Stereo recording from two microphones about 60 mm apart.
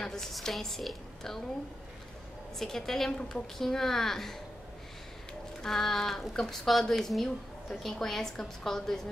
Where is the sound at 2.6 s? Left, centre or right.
Centre.